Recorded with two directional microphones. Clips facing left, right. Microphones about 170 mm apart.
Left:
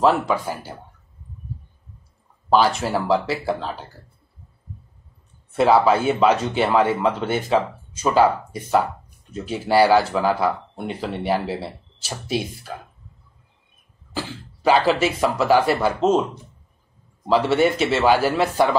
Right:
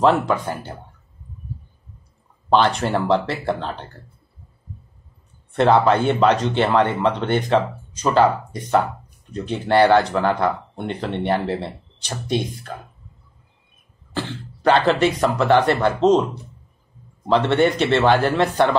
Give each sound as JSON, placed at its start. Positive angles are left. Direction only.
{"t": 0.0, "sound": "speech", "side_deg": 0}
{"t": 2.5, "sound": "speech", "side_deg": 5}
{"t": 5.5, "sound": "speech", "side_deg": 5}
{"t": 14.1, "sound": "speech", "side_deg": 5}
{"t": 17.3, "sound": "speech", "side_deg": 5}